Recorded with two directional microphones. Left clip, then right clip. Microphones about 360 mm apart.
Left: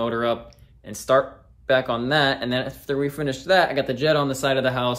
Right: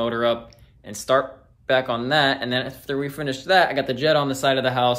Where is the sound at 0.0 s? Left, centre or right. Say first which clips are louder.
Right 2 dB; centre.